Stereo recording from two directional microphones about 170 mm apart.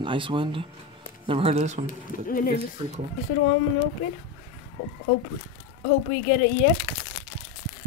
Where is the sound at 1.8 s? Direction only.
55° left (ahead or behind).